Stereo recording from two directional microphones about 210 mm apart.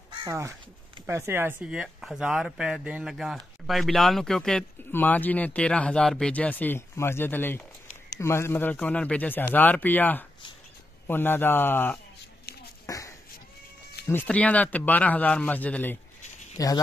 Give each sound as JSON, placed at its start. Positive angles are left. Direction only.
{"t": 0.2, "sound": "speech", "side_deg": -15}
{"t": 12.8, "sound": "a sound", "side_deg": 15}
{"t": 14.0, "sound": "speech", "side_deg": 10}